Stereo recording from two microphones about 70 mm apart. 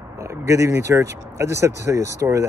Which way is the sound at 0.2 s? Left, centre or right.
Right.